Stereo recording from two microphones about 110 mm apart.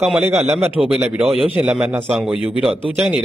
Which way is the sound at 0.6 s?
20° right (ahead or behind).